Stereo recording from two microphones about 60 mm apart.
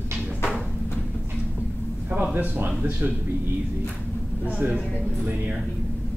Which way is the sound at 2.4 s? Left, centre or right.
Right.